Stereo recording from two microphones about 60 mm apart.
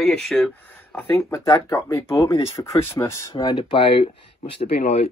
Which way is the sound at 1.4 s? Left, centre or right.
Left.